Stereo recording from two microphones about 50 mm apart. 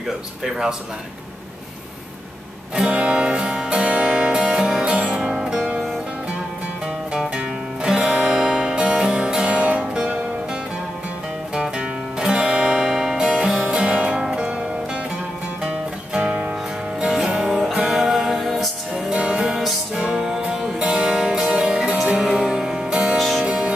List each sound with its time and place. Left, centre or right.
0.4 s speech: centre
2.7 s music: right
7.8 s music: centre
11.7 s music: centre
15.6 s music: centre
17.1 s music: centre
19.1 s music: right
23.1 s music: centre
23.4 s music: right